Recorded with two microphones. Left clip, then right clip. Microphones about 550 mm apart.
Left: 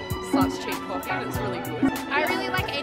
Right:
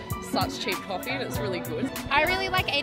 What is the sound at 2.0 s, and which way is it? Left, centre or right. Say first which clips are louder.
Speech: right 5 dB; right.